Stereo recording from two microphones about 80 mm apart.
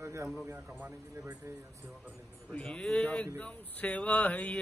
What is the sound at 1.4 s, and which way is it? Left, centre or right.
Speech, right.